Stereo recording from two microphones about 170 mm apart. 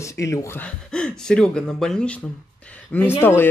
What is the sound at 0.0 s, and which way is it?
Speech, 20° left (ahead or behind).